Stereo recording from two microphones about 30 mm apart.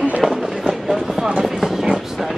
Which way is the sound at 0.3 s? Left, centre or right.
Centre.